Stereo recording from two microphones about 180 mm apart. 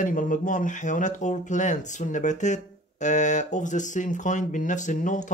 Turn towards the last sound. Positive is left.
turn(degrees=45)  # may be behind; listen again after turning